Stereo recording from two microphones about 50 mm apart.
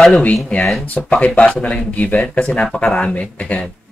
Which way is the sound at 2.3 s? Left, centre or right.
Left.